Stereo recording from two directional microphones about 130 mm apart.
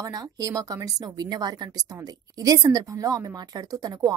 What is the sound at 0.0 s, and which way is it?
A woman's voice, 30° right (ahead or behind).